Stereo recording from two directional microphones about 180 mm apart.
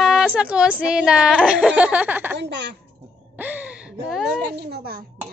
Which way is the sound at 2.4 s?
75° right (ahead or behind).